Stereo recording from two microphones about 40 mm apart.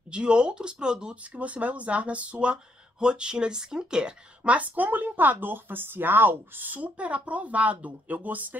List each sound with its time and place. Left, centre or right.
0.1 s speech: right
1.3 s speech: right
2.5 s speech: right
4.5 s speech: right
6.8 s speech: right